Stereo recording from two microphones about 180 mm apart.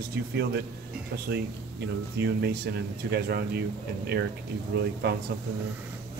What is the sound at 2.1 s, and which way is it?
Speech, 65° right (ahead or behind).